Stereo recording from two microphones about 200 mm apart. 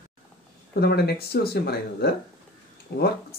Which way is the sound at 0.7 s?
55° left (ahead or behind).